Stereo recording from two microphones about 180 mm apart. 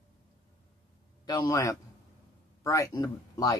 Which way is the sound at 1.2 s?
20° left (ahead or behind).